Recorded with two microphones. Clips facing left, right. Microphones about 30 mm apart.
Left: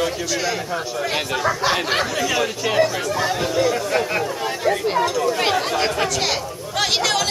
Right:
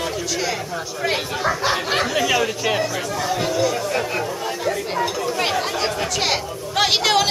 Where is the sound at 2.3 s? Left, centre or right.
Centre.